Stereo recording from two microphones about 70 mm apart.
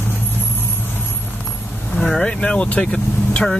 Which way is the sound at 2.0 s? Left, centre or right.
Centre.